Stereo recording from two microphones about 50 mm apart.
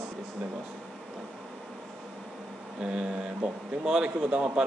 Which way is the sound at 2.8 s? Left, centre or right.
Centre.